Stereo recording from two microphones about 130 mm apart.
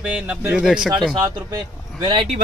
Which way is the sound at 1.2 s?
30° right (ahead or behind).